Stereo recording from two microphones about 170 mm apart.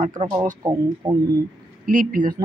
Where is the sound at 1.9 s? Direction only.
55° right (ahead or behind).